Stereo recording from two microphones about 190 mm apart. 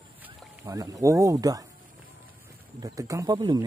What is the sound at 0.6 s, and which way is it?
Speech, 20° right (ahead or behind).